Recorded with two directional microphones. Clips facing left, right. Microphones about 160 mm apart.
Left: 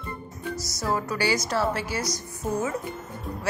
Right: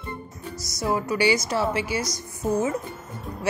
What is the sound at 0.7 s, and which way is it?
A woman's voice, 15° right (ahead or behind).